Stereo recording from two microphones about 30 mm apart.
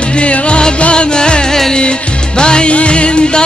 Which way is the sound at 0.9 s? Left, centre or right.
Left.